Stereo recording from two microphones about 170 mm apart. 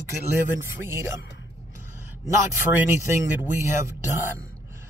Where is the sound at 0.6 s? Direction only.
15° right (ahead or behind).